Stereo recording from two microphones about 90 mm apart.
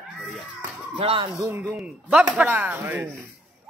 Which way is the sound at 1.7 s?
10° right (ahead or behind).